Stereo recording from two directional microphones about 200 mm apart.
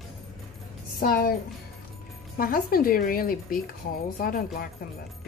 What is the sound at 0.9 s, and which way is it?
Speech, 50° left (ahead or behind).